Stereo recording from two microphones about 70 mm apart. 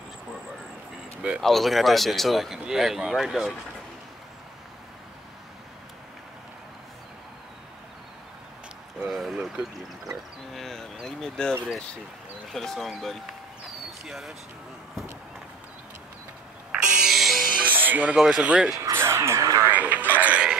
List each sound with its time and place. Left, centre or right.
1.4 s speech: centre
9.1 s speech: centre
10.5 s a sound: centre
11.1 s speech: centre
12.5 s speech: centre
16.7 s music: centre
17.6 s music: right
18.1 s speech: centre
18.8 s a sound: right
19.6 s a sound: right